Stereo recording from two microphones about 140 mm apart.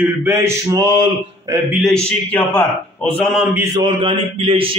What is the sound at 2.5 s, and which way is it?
Speech, 10° left (ahead or behind).